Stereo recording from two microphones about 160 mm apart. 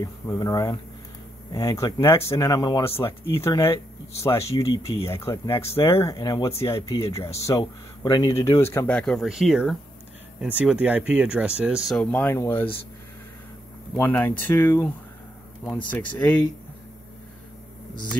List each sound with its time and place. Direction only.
0.0 s speech: 25° left (ahead or behind); by 12.1 s centre (ahead or behind)
12.1 s speech: 10° left (ahead or behind)
13.9 s speech: 15° left (ahead or behind)